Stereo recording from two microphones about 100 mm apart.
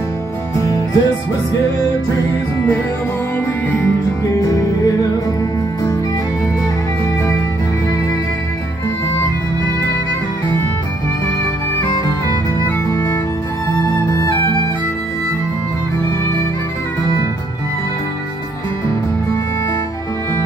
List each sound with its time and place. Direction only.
0.6 s music: 35° left (ahead or behind)
3.7 s music: 25° left (ahead or behind)
12.9 s music: 35° left (ahead or behind)